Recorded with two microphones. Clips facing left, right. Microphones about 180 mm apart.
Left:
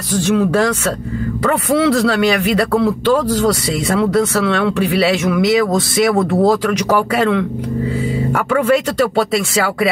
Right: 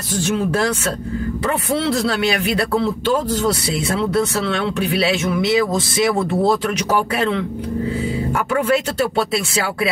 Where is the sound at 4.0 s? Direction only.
60° left (ahead or behind).